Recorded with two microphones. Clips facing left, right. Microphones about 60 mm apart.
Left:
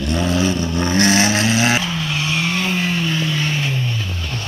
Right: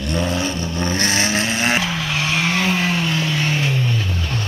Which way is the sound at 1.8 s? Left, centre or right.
Right.